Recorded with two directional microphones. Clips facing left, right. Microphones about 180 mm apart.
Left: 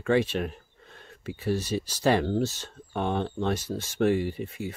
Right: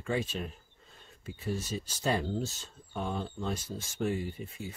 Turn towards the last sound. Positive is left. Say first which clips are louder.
# left 7 dB
turn(degrees=75)  # may be behind; listen again after turning